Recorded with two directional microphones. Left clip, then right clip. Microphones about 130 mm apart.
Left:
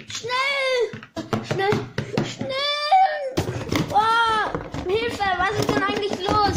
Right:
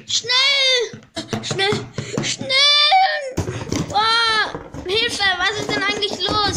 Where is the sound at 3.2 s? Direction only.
20° right (ahead or behind).